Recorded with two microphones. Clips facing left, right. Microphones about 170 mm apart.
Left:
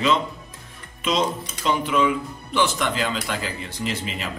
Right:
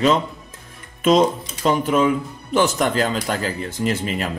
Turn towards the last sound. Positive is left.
turn(degrees=-50)  # may be behind; listen again after turning